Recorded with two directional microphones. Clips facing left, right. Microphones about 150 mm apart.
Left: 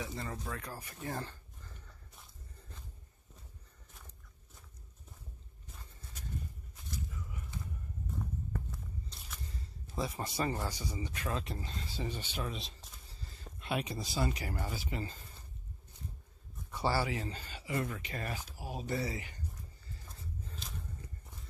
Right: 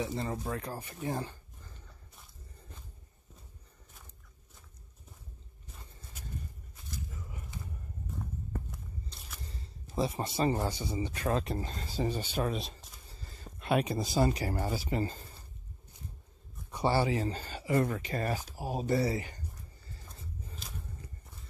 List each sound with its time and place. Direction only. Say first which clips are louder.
0.0 s speech: right 6 dB; 30° right (ahead or behind)
1.0 s speech: right 5 dB; 15° right (ahead or behind)
9.9 s speech: right 5 dB; 25° right (ahead or behind)
11.2 s speech: right 8 dB; 45° right (ahead or behind)
16.7 s speech: right 5 dB; 25° right (ahead or behind)